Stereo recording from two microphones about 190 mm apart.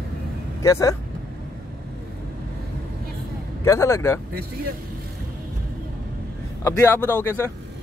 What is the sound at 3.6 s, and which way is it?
Speech, 15° left (ahead or behind).